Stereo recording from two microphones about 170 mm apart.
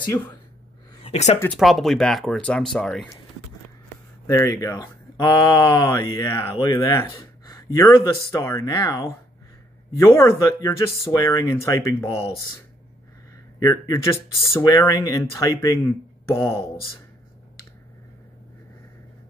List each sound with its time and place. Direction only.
1.0 s speech: 40° left (ahead or behind)
1.6 s speech: centre (ahead or behind)
4.3 s speech: 20° left (ahead or behind)
12.1 s speech: 35° left (ahead or behind)
13.6 s speech: 20° left (ahead or behind)